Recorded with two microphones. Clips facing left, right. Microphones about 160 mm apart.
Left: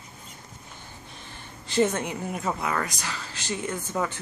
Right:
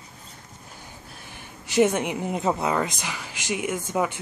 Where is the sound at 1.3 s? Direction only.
15° right (ahead or behind).